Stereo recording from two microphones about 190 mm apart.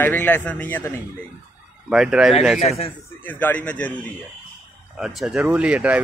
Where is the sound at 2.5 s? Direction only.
35° left (ahead or behind).